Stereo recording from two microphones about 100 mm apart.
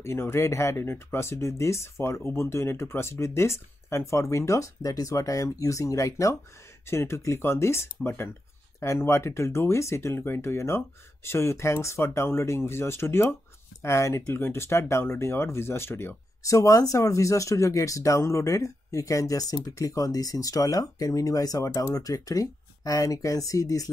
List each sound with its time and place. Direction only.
0.0 s speech: 25° left (ahead or behind)
16.4 s speech: 35° left (ahead or behind)